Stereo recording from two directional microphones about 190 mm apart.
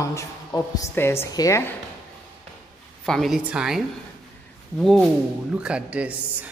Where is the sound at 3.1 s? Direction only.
Centre (ahead or behind).